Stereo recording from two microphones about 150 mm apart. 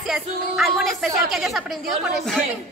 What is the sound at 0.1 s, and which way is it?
A woman's voice, centre (ahead or behind).